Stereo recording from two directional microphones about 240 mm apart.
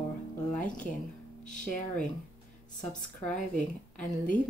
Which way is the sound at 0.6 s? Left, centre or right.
Centre.